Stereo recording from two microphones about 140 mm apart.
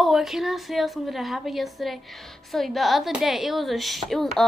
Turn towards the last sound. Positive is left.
turn(degrees=0)  # may be behind; listen again after turning